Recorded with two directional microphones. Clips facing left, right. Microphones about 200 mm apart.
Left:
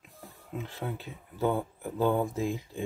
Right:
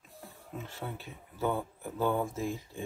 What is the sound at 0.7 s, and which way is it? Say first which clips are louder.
Speech: left 4 dB; 15° left (ahead or behind).